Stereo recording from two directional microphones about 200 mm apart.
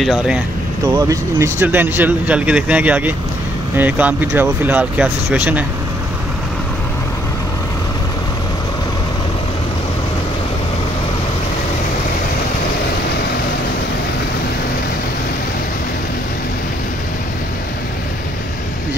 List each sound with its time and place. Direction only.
0.0 s speech: centre (ahead or behind)
0.9 s speech: 15° right (ahead or behind)